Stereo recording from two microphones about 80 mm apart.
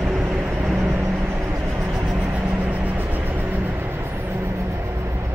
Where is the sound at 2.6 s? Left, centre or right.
Centre.